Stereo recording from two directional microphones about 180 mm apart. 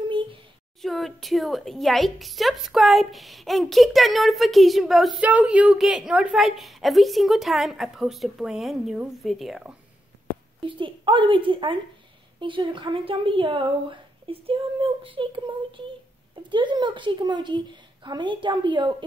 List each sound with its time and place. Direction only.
0.8 s a woman's voice: centre (ahead or behind)
10.6 s speech: 30° right (ahead or behind)